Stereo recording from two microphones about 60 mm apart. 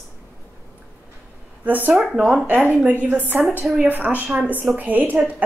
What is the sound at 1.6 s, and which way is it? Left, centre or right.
A woman's voice, right.